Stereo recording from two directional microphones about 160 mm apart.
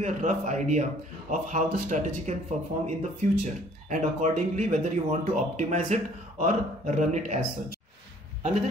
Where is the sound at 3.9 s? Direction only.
50° right (ahead or behind).